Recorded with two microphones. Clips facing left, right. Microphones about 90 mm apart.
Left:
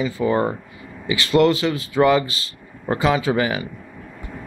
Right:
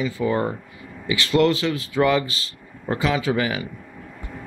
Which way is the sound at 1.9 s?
30° left (ahead or behind).